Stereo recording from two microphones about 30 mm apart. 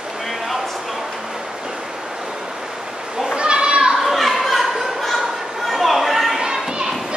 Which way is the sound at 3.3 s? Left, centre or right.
Right.